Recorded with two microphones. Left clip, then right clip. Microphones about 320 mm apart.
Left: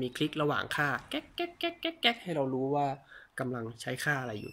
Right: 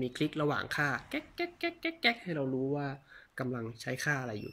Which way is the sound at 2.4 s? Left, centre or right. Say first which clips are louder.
Left 4 dB; left.